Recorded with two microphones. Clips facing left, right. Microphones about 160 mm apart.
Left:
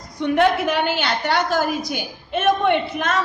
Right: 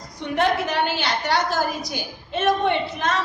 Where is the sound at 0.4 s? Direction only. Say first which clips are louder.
Left 2 dB; 55° left (ahead or behind).